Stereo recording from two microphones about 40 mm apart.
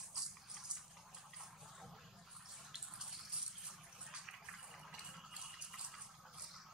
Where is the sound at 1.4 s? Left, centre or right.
Centre.